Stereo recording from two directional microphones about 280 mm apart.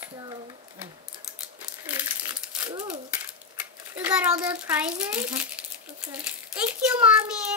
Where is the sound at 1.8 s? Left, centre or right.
Centre.